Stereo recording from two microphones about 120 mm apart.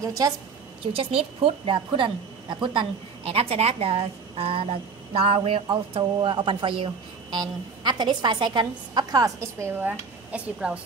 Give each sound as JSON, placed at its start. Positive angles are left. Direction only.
{"t": 0.0, "sound": "a woman's voice", "side_deg": -30}
{"t": 0.9, "sound": "a woman's voice", "side_deg": -50}